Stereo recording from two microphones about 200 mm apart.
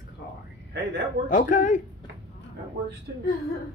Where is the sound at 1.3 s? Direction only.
40° left (ahead or behind).